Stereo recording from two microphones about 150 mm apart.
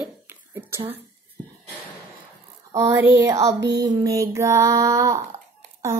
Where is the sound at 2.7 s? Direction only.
20° right (ahead or behind).